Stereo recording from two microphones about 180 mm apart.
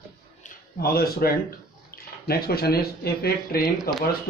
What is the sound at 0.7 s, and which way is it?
A man's voice, 60° left (ahead or behind).